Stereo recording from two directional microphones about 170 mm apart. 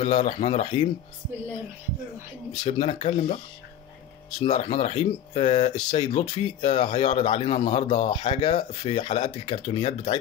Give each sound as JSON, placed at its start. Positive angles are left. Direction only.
{"t": 0.0, "sound": "speech", "side_deg": 35}
{"t": 2.6, "sound": "speech", "side_deg": 35}
{"t": 4.4, "sound": "speech", "side_deg": 35}
{"t": 5.8, "sound": "speech", "side_deg": 30}